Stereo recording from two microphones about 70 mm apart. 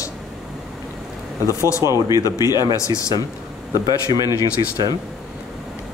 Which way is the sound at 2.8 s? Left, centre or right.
Left.